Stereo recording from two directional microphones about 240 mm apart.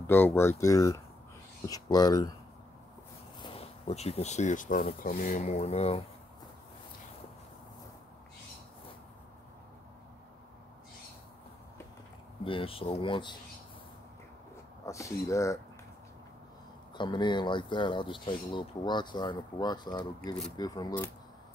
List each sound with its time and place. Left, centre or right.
0.0 s speech: centre
3.3 s speech: left
12.4 s speech: left
14.9 s speech: centre
16.9 s speech: centre